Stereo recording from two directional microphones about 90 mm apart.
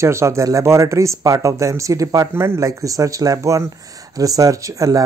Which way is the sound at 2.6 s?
40° right (ahead or behind).